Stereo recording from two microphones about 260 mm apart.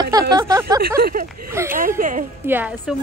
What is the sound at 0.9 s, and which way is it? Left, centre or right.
Speech, right.